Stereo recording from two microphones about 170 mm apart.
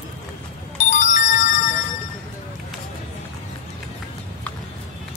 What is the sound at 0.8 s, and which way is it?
Music, 45° left (ahead or behind).